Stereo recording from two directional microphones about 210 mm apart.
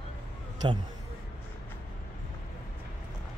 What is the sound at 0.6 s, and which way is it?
Speech, 20° right (ahead or behind).